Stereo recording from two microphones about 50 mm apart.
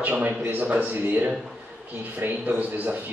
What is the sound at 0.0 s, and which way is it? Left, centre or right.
A man's voice, right.